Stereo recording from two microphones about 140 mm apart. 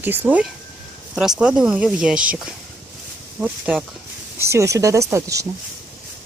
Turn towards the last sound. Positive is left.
turn(degrees=-20)  # may be behind; listen again after turning